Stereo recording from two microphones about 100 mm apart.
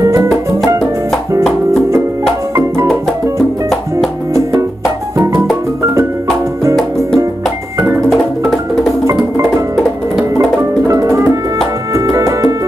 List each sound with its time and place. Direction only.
0.0 s music: 30° right (ahead or behind)
4.3 s music: 30° right (ahead or behind)
10.9 s music: 30° right (ahead or behind)